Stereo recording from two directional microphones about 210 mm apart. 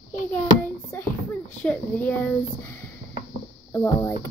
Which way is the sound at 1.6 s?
5° left (ahead or behind).